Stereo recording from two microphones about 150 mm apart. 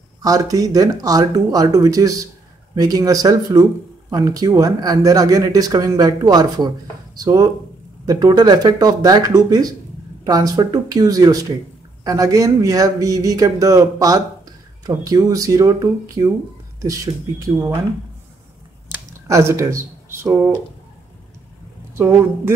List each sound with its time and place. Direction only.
0.2 s a man's voice: 25° right (ahead or behind)
19.2 s speech: 20° right (ahead or behind)
21.9 s a woman's voice: 15° right (ahead or behind)